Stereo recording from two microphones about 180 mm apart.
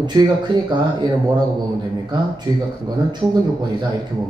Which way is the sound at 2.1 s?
25° right (ahead or behind).